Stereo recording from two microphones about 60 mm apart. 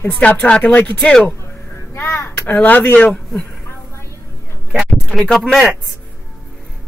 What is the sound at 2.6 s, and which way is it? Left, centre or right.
Speech, left.